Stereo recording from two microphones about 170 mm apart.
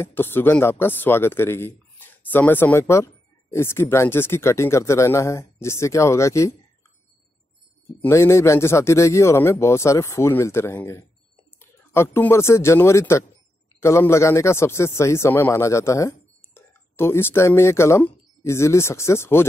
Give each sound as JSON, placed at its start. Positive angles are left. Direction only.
{"t": 0.0, "sound": "speech", "side_deg": 15}
{"t": 8.0, "sound": "speech", "side_deg": 15}